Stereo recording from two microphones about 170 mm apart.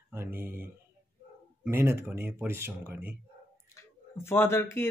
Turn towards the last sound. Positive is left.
turn(degrees=15)  # may be behind; listen again after turning